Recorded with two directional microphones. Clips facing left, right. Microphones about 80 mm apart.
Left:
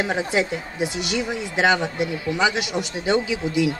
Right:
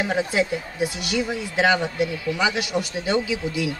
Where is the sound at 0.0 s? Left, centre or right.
Left.